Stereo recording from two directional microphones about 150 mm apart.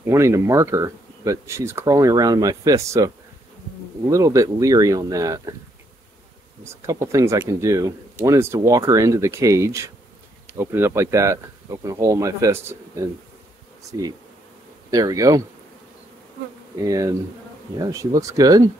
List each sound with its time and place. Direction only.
0.0 s speech: 20° right (ahead or behind)
4.1 s speech: 20° right (ahead or behind)
6.6 s speech: 20° right (ahead or behind)
14.9 s speech: 25° right (ahead or behind)
16.8 s speech: 20° right (ahead or behind)